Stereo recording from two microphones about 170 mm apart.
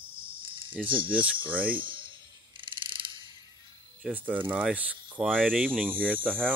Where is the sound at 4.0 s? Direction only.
10° right (ahead or behind).